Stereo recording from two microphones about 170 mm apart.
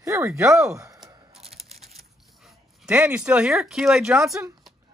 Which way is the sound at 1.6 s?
Centre (ahead or behind).